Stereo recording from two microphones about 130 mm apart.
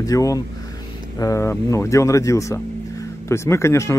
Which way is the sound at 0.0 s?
25° left (ahead or behind).